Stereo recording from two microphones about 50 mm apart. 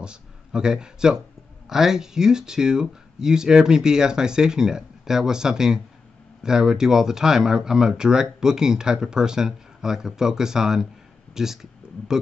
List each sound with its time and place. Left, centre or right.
0.0 s speech: centre